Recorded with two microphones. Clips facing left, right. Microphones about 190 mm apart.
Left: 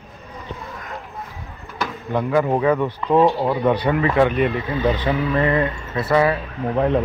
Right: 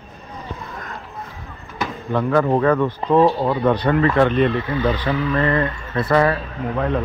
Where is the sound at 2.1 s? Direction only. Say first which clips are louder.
Right 1 dB; 15° left (ahead or behind).